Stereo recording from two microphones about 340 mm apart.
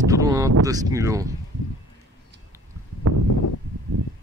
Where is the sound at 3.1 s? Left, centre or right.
Right.